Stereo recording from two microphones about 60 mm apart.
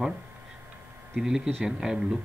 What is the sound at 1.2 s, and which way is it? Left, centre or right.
Speech, centre.